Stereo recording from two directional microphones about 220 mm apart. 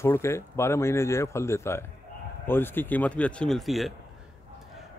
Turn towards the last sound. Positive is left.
turn(degrees=0)  # may be behind; listen again after turning